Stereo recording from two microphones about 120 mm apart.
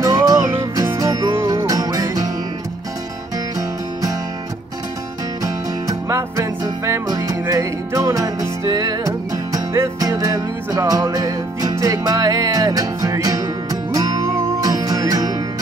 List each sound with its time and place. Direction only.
0.0 s music: 30° right (ahead or behind)
5.4 s music: 25° right (ahead or behind)